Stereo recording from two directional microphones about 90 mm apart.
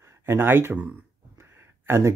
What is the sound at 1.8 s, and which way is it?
Speech, 30° right (ahead or behind).